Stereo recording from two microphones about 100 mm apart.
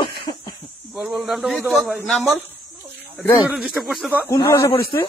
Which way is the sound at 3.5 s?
5° right (ahead or behind).